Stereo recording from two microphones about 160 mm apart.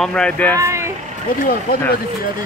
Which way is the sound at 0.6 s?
20° right (ahead or behind).